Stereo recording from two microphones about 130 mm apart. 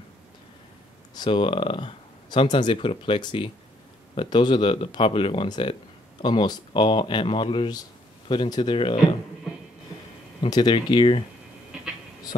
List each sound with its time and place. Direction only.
1.1 s speech: 40° left (ahead or behind)
10.4 s speech: 35° left (ahead or behind)